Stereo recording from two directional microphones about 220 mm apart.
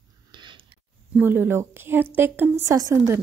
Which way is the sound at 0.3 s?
20° right (ahead or behind).